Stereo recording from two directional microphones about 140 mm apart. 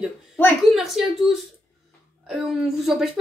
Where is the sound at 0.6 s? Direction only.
Centre (ahead or behind).